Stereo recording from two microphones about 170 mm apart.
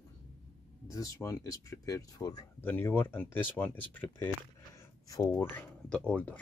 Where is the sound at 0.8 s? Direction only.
20° left (ahead or behind).